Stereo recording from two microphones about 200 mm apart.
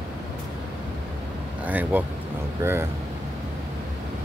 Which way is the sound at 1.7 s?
10° right (ahead or behind).